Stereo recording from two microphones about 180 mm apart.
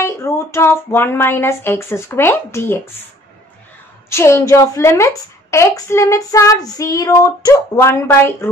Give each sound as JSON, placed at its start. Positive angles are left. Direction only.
{"t": 0.0, "sound": "a woman's voice", "side_deg": 15}
{"t": 4.1, "sound": "a woman's voice", "side_deg": 15}